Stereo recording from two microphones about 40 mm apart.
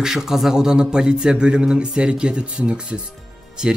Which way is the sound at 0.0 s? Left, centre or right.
Centre.